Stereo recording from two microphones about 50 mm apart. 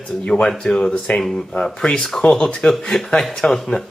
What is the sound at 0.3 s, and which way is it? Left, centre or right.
Speech, centre.